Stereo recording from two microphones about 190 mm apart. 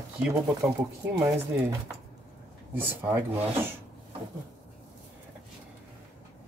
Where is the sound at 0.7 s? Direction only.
10° right (ahead or behind).